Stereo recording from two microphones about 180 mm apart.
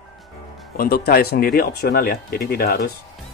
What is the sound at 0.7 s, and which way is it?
Speech, 60° left (ahead or behind).